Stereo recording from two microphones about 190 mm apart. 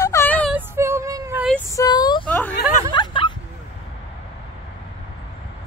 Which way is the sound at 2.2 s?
5° left (ahead or behind).